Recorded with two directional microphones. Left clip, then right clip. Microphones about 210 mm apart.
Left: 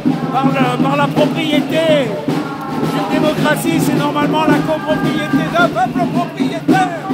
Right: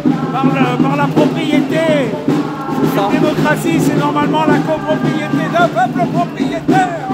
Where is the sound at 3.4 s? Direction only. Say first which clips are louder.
Right 1 dB; centre (ahead or behind).